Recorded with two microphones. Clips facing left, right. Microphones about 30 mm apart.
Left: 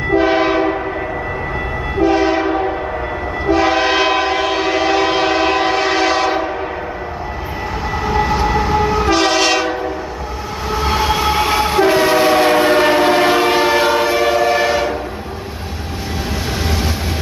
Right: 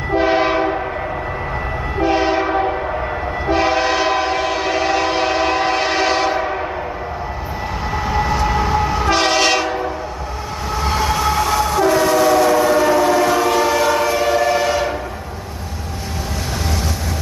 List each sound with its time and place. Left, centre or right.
0.1 s train: centre
2.0 s train: centre
3.7 s train: centre
8.1 s train: centre
10.7 s train: centre